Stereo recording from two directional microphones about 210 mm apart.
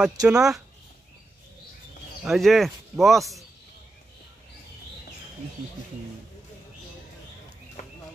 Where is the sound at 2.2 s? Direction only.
Centre (ahead or behind).